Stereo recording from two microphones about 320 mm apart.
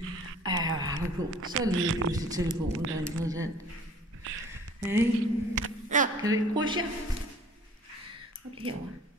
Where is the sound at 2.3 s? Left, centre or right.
Centre.